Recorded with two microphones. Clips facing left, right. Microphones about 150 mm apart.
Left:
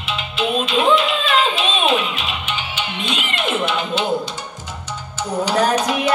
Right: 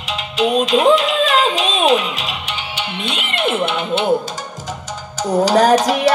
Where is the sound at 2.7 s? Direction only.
65° right (ahead or behind).